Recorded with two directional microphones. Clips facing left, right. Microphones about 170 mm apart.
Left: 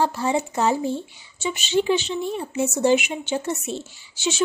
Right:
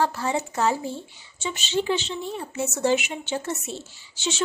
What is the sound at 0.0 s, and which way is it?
A woman's voice, 15° left (ahead or behind).